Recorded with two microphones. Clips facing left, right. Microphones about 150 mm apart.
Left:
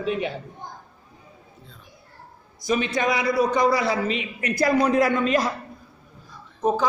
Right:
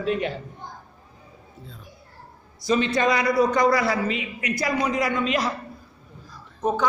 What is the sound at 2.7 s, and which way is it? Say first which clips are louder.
A man's voice: right 2 dB; 10° left (ahead or behind).